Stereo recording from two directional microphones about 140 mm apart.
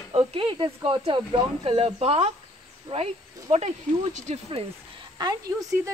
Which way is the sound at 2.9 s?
35° right (ahead or behind).